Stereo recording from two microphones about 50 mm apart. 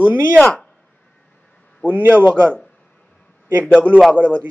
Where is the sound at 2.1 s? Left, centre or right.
Left.